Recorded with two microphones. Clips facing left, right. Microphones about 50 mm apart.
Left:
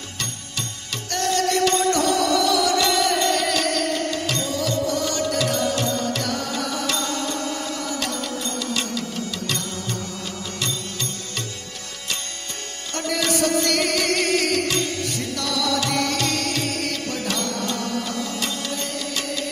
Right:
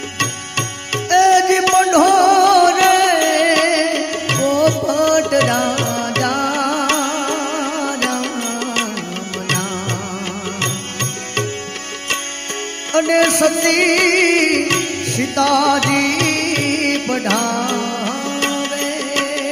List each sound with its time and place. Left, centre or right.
0.2 s music: right
12.9 s music: right